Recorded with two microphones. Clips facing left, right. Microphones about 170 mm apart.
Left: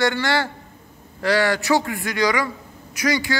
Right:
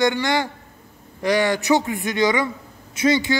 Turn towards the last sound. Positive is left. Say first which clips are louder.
# right 3 dB
turn(degrees=-25)  # may be behind; listen again after turning